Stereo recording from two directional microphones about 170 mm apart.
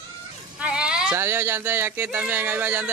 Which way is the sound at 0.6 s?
5° right (ahead or behind).